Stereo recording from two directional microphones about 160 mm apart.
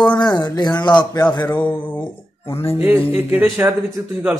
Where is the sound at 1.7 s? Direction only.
10° left (ahead or behind).